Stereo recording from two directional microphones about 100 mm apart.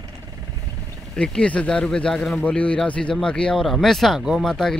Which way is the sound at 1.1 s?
10° left (ahead or behind).